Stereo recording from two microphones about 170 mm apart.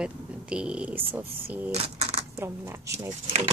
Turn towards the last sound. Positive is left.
turn(degrees=-15)  # may be behind; listen again after turning